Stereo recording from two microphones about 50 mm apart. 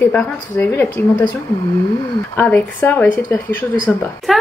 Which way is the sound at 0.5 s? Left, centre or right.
Left.